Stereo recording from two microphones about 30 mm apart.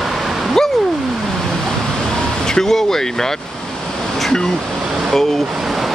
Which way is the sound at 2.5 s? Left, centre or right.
Centre.